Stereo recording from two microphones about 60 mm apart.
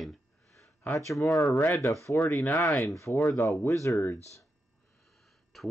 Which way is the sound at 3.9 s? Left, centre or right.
Left.